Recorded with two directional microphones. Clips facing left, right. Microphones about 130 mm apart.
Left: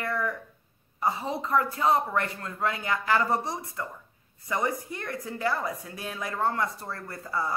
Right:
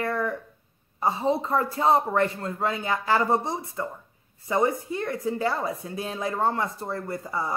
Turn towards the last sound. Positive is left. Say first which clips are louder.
# right 2 dB
turn(degrees=-20)  # may be behind; listen again after turning